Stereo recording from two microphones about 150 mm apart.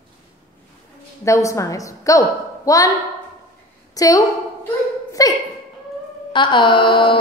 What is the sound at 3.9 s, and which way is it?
A woman's voice, 25° left (ahead or behind).